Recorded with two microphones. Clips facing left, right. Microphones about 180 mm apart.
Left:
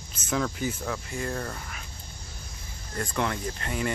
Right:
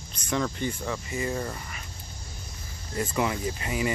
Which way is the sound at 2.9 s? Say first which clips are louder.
Right 2 dB; 5° right (ahead or behind).